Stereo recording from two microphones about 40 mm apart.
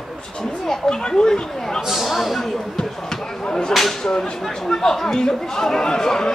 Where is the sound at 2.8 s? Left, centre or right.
Centre.